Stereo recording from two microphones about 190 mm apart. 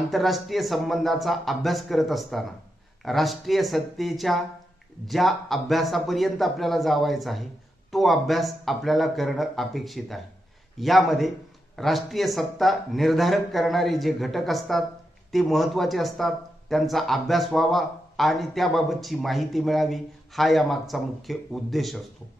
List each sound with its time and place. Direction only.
0.1 s speech: centre (ahead or behind)